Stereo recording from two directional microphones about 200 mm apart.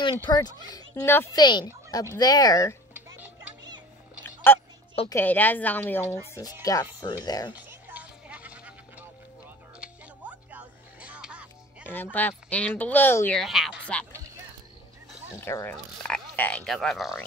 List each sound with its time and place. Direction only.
0.3 s speech: 20° left (ahead or behind)
2.9 s music: 10° right (ahead or behind)
4.5 s speech: 10° left (ahead or behind)
7.5 s music: 5° right (ahead or behind)
11.8 s speech: 10° left (ahead or behind)
13.4 s speech: centre (ahead or behind)
15.4 s speech: 15° left (ahead or behind)